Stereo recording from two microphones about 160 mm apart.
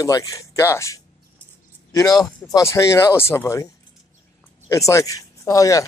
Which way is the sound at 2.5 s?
15° left (ahead or behind).